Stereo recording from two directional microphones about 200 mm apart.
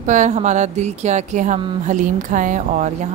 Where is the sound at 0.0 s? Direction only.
35° right (ahead or behind).